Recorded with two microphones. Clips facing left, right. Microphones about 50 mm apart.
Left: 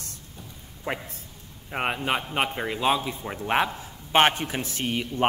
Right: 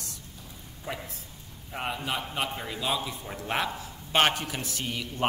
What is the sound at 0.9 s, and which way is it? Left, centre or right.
A man's voice, left.